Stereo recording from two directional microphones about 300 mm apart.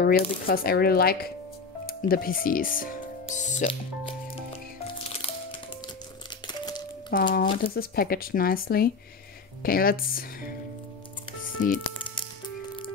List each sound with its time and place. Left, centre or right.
0.0 s speech: left
5.0 s music: centre
6.4 s crumpling: centre
7.1 s speech: left
11.6 s music: left